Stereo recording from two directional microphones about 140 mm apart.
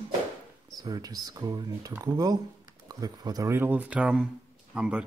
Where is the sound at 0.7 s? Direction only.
25° right (ahead or behind).